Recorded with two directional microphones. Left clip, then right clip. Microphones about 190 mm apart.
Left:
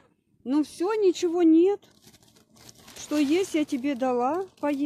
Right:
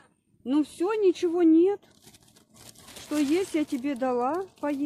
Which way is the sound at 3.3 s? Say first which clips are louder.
Left 2 dB; 15° left (ahead or behind).